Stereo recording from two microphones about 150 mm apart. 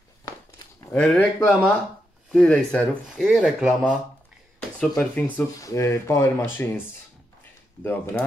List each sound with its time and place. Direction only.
0.9 s speech: 10° left (ahead or behind)
4.6 s speech: 5° left (ahead or behind)
5.6 s speech: 20° left (ahead or behind)
7.8 s speech: 15° left (ahead or behind)